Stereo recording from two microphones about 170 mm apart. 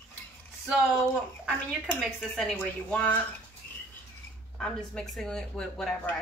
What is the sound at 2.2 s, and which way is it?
Speech, centre (ahead or behind).